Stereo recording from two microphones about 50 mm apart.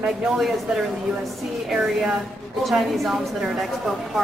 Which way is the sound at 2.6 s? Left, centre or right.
Centre.